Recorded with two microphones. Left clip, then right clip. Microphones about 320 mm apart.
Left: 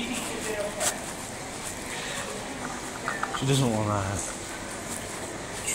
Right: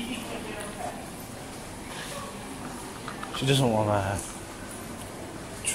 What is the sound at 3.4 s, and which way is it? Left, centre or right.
Speech, right.